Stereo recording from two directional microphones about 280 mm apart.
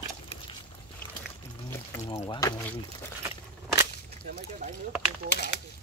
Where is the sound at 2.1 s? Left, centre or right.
Centre.